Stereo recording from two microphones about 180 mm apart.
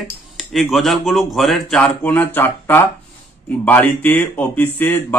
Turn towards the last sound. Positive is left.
turn(degrees=10)  # may be behind; listen again after turning